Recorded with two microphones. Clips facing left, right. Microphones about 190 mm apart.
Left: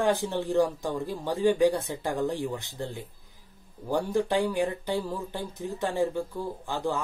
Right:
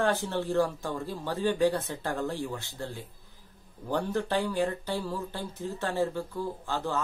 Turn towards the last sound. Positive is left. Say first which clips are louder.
# left 2 dB
turn(degrees=15)  # may be behind; listen again after turning